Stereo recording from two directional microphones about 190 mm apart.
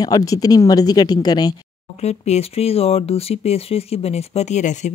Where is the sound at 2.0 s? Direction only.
35° left (ahead or behind).